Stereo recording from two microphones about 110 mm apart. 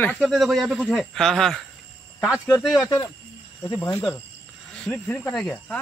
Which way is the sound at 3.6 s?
20° left (ahead or behind).